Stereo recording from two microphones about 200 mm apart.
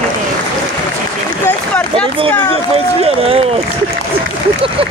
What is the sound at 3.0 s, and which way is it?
Speech, 30° right (ahead or behind).